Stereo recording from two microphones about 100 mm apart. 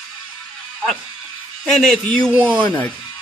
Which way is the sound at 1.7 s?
5° left (ahead or behind).